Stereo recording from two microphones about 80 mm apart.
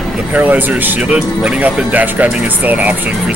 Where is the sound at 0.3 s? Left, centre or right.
Right.